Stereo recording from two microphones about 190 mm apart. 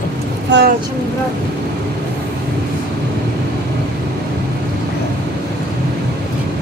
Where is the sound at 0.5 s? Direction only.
70° right (ahead or behind).